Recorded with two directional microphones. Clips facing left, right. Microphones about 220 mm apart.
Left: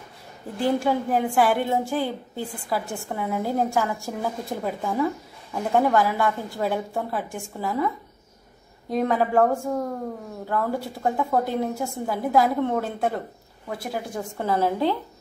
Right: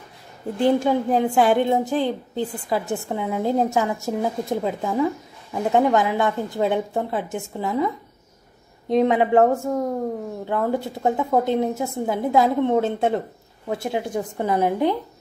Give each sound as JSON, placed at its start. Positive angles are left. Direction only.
{"t": 0.7, "sound": "a woman's voice", "side_deg": -20}